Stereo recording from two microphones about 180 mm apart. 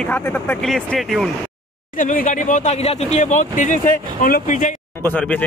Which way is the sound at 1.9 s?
50° left (ahead or behind).